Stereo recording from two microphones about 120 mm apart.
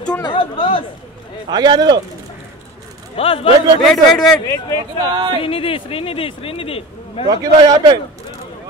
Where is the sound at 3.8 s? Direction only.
Centre (ahead or behind).